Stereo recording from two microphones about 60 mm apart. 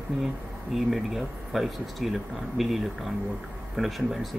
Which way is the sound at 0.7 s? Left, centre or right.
Centre.